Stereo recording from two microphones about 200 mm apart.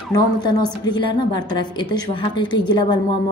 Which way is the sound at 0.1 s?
20° left (ahead or behind).